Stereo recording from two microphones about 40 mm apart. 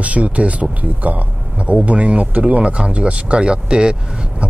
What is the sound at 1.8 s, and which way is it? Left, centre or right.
Speech, right.